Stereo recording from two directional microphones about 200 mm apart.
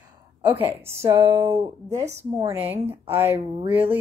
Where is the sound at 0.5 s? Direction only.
10° right (ahead or behind).